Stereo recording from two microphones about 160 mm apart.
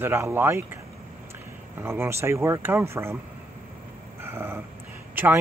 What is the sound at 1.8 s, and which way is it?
Speech, 15° right (ahead or behind).